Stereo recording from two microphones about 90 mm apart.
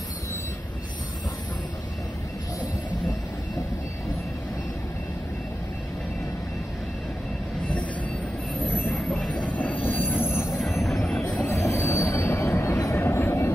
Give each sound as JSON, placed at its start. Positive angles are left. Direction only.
{"t": 8.6, "sound": "train", "side_deg": 25}
{"t": 11.7, "sound": "train", "side_deg": 20}